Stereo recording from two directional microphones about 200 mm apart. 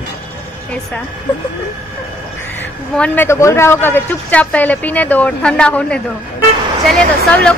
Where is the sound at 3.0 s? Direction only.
10° left (ahead or behind).